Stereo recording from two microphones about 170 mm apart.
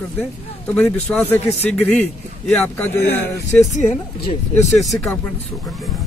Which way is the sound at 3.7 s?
45° left (ahead or behind).